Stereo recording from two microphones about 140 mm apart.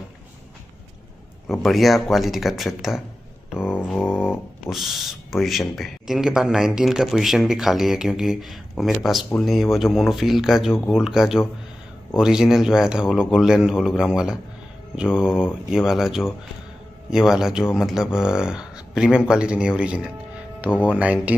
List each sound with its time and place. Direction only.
1.5 s speech: centre (ahead or behind)
3.5 s mantra: 15° left (ahead or behind)
4.6 s speech: centre (ahead or behind)
20.7 s speech: 10° left (ahead or behind)
21.0 s speech: 10° right (ahead or behind)